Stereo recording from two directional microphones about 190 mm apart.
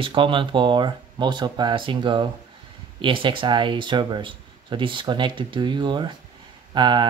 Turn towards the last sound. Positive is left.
turn(degrees=-25)  # may be behind; listen again after turning